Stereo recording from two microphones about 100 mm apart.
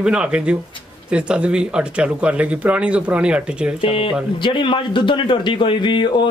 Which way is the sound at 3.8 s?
65° left (ahead or behind).